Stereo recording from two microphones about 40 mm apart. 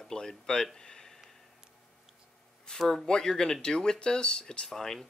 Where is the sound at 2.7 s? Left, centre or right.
Centre.